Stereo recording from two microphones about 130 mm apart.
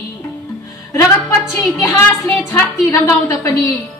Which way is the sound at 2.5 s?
25° left (ahead or behind).